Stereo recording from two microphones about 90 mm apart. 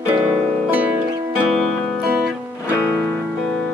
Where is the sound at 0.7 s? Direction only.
20° right (ahead or behind).